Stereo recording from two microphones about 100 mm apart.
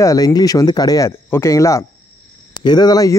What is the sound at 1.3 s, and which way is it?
Speech, 30° left (ahead or behind).